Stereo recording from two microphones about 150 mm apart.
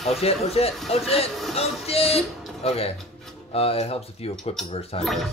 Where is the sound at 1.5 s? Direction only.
40° left (ahead or behind).